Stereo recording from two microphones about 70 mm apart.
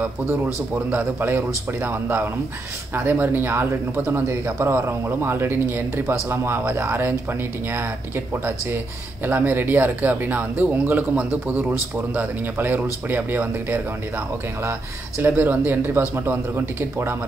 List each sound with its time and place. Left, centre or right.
0.0 s speech: right
9.2 s speech: right
12.1 s speech: right
14.6 s speech: right